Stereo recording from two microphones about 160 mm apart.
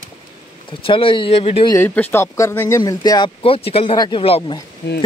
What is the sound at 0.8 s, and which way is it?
Speech, 35° left (ahead or behind).